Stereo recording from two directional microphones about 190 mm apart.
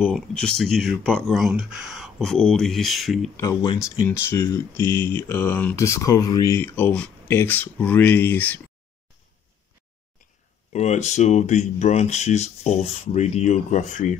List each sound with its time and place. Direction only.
0.0 s speech: 5° left (ahead or behind)
3.3 s speech: 20° left (ahead or behind)
10.7 s speech: 40° left (ahead or behind)